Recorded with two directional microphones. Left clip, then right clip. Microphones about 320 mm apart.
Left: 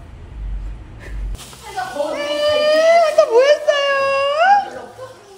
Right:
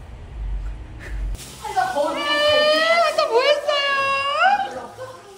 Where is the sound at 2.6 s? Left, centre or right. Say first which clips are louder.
Left 4 dB; centre.